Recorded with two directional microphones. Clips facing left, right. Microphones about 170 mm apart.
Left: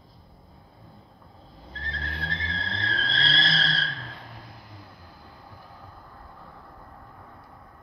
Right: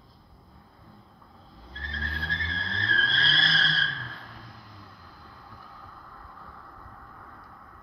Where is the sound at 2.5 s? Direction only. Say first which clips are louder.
Left 2 dB; 20° left (ahead or behind).